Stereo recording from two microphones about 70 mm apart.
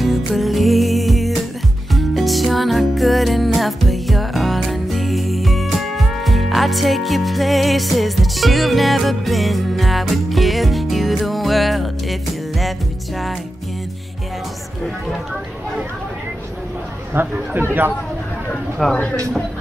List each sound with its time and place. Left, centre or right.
0.0 s music: centre
17.1 s speech: right
18.8 s speech: centre